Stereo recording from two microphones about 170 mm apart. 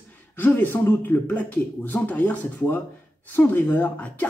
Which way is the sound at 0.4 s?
10° left (ahead or behind).